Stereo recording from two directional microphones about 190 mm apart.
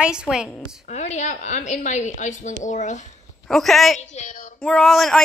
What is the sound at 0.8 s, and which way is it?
A woman's voice, 35° left (ahead or behind).